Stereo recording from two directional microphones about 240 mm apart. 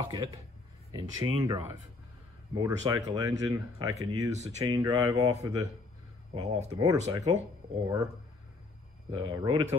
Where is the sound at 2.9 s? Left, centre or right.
Centre.